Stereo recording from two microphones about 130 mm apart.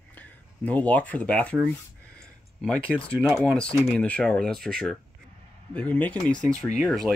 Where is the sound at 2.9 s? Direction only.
Centre (ahead or behind).